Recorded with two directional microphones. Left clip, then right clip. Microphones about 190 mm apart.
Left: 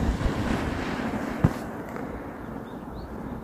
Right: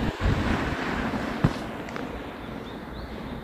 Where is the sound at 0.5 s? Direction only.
20° left (ahead or behind).